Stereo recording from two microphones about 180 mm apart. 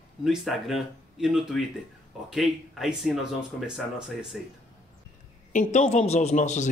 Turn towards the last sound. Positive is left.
turn(degrees=40)  # may be behind; listen again after turning